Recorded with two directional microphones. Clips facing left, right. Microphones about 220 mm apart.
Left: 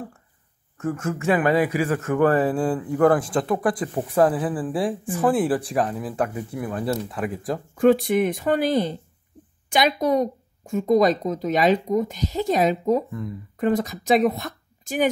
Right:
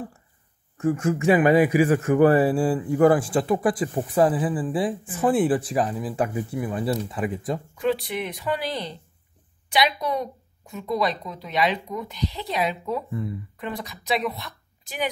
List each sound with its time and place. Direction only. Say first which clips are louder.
0.7 s a man's voice: right 4 dB; 10° right (ahead or behind)
7.7 s a woman's voice: left 10 dB; 50° left (ahead or behind)